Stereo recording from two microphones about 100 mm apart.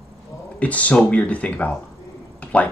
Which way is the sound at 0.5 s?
15° left (ahead or behind).